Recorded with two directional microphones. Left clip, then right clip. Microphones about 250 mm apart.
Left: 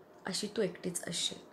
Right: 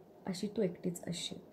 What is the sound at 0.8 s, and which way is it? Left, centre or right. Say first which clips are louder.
Speech: left 4 dB; centre.